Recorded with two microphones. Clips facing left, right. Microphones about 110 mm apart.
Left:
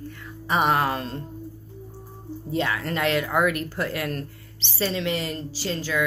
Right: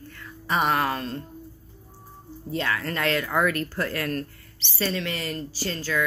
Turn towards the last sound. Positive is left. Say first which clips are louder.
# left 1 dB
turn(degrees=20)  # may be behind; listen again after turning